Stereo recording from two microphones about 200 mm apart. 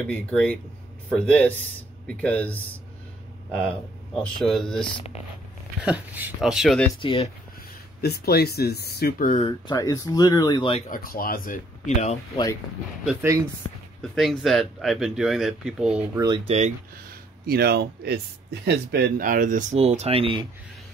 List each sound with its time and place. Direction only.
0.1 s speech: 5° left (ahead or behind)
5.9 s speech: 10° right (ahead or behind)
7.0 s speech: 25° left (ahead or behind)
8.0 s speech: 50° left (ahead or behind)
9.4 s speech: 20° left (ahead or behind)
10.9 s speech: 45° left (ahead or behind)
13.0 s speech: 5° right (ahead or behind)
16.4 s speech: 35° right (ahead or behind)
17.5 s speech: 50° right (ahead or behind); by 20.4 s 25° right (ahead or behind)